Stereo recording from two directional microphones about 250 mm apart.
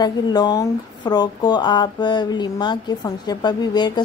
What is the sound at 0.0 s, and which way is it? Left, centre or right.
Speech, centre.